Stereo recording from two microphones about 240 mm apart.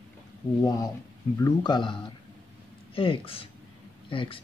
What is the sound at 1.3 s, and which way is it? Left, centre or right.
Speech, centre.